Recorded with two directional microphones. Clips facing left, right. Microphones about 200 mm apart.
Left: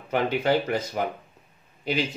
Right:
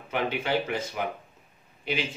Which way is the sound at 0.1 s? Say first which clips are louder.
Left 5 dB; 40° left (ahead or behind).